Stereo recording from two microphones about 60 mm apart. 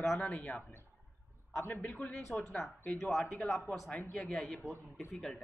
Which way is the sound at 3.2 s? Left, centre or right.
Left.